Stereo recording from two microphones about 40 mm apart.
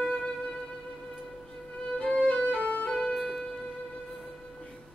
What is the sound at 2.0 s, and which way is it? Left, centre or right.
Violin, left.